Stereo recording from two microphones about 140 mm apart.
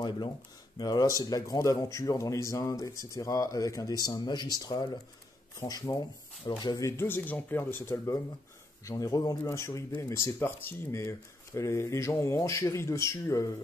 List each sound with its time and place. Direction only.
0.7 s speech: 30° left (ahead or behind)